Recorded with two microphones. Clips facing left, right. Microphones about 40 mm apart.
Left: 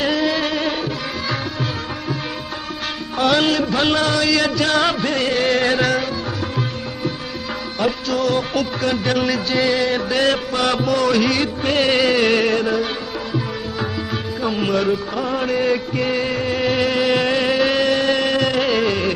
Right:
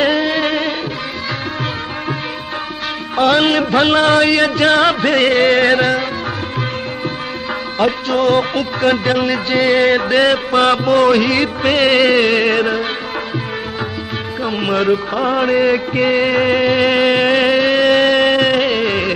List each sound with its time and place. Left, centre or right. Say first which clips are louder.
0.0 s music: right 4 dB; right
3.2 s music: right 4 dB; right
5.8 s music: right 3 dB; centre
7.8 s music: right 5 dB; right
9.0 s music: right 3 dB; right
11.4 s music: right 4 dB; right
12.4 s music: right 3 dB; right
14.4 s music: right 3 dB; right
16.6 s music: right 5 dB; right
16.9 s insect: right 5 dB; right
17.8 s a sound: right 6 dB; right
18.7 s music: right 1 dB; right